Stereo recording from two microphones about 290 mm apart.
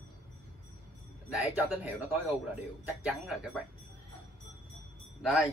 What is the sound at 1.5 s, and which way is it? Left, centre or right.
Speech, centre.